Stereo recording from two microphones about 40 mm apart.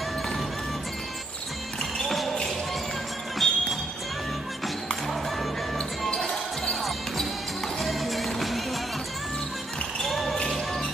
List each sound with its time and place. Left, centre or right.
2.0 s basketball bounce: centre
3.4 s music: centre
6.0 s basketball bounce: centre
7.8 s music: centre
10.0 s basketball bounce: centre